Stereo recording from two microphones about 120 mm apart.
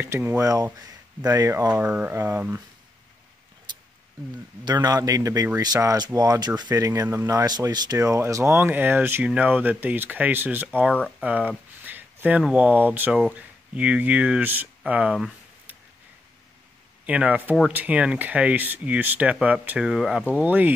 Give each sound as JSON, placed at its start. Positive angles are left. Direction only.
{"t": 0.0, "sound": "speech", "side_deg": -15}
{"t": 0.4, "sound": "speech", "side_deg": -30}
{"t": 1.7, "sound": "speech", "side_deg": -15}
{"t": 4.6, "sound": "speech", "side_deg": -35}
{"t": 10.9, "sound": "speech", "side_deg": 5}
{"t": 11.1, "sound": "speech", "side_deg": -10}
{"t": 17.0, "sound": "speech", "side_deg": -10}